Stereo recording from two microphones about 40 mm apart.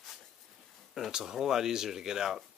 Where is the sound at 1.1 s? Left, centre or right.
Centre.